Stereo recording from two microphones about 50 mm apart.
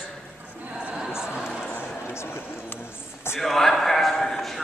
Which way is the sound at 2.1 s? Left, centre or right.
Left.